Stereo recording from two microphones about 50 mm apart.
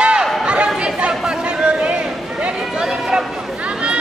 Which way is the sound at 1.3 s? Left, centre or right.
Centre.